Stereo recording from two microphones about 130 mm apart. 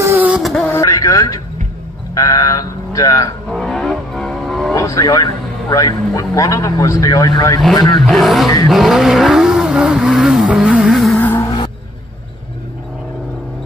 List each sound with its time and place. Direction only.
0.0 s vehicle: 20° right (ahead or behind)
0.3 s vehicle: centre (ahead or behind)
0.7 s vehicle: 25° left (ahead or behind)
2.1 s a man's voice: 25° left (ahead or behind)
3.4 s vehicle: centre (ahead or behind)
4.7 s a man's voice: 25° left (ahead or behind)
7.6 s vehicle: centre (ahead or behind)
11.1 s vehicle: 15° left (ahead or behind)